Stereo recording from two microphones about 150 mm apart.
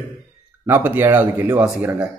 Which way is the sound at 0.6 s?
15° right (ahead or behind).